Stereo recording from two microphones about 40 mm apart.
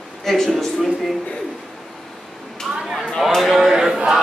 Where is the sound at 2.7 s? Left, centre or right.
Centre.